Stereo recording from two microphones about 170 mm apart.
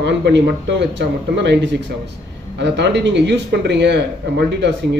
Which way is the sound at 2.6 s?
90° right.